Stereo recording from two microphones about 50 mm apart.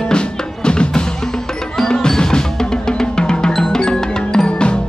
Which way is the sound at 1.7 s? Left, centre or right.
Centre.